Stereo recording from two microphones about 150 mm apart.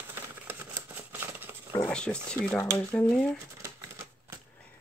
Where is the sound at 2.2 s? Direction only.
5° left (ahead or behind).